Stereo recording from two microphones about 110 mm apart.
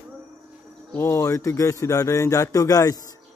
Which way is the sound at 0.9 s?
25° left (ahead or behind).